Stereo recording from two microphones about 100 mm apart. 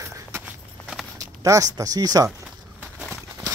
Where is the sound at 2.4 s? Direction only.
10° right (ahead or behind).